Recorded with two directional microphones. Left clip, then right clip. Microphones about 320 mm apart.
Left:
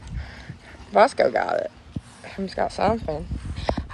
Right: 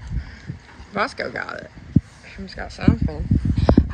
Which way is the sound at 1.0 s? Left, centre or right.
Centre.